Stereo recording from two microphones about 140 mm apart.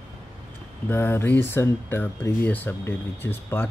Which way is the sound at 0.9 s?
15° left (ahead or behind).